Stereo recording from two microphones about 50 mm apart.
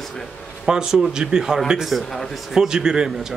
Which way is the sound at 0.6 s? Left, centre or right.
Centre.